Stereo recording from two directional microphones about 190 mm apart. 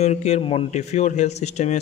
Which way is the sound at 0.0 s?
35° left (ahead or behind).